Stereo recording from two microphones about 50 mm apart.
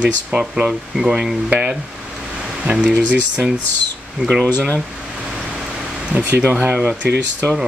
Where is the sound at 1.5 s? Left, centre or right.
Right.